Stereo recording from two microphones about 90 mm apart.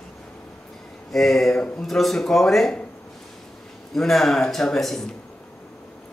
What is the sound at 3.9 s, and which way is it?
Speech, 5° left (ahead or behind).